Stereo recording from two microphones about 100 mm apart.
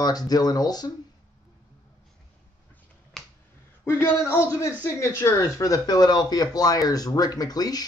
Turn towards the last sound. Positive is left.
turn(degrees=40)  # may be behind; listen again after turning